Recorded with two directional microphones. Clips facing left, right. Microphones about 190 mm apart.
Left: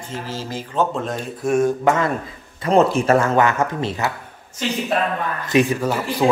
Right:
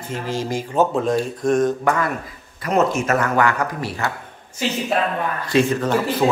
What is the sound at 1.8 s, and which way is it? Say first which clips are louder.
Speech: left 2 dB; 25° left (ahead or behind).